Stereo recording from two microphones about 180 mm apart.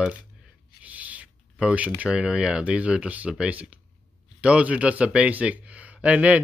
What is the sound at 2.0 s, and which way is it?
A man's voice, 5° right (ahead or behind).